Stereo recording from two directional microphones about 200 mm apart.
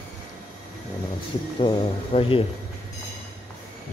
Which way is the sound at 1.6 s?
25° left (ahead or behind).